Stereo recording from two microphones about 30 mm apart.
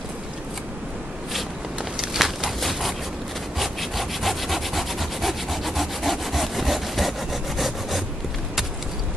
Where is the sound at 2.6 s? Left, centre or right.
Centre.